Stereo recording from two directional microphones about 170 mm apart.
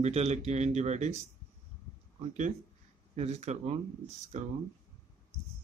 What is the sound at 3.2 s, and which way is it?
Speech, 40° right (ahead or behind).